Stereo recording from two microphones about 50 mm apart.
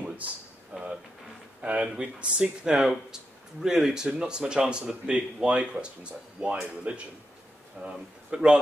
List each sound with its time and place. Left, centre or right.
0.7 s music: right
1.6 s speech: right